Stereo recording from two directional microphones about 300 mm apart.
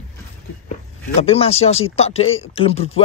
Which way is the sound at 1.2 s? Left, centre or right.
Centre.